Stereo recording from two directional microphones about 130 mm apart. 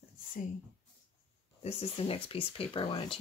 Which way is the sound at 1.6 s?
50° left (ahead or behind).